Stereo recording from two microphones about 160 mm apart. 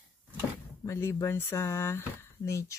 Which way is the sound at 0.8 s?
15° left (ahead or behind).